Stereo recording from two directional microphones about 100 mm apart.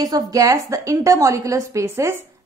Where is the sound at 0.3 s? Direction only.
35° right (ahead or behind).